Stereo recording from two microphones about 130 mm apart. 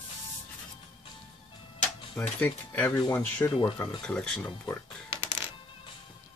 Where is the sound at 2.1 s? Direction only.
10° left (ahead or behind).